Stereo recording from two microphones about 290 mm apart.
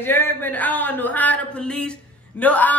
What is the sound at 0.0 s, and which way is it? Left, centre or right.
A man's voice, centre.